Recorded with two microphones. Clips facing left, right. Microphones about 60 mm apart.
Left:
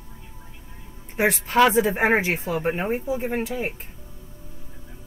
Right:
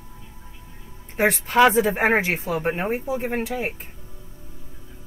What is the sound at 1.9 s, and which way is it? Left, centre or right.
Speech, right.